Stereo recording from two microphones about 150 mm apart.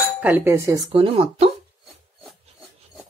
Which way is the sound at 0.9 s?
40° right (ahead or behind).